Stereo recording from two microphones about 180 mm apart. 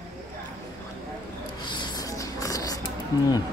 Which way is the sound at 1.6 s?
25° left (ahead or behind).